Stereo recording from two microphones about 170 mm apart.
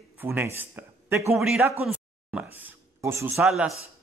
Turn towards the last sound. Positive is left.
turn(degrees=-5)  # may be behind; listen again after turning